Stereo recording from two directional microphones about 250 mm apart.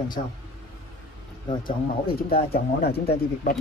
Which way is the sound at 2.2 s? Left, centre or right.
Left.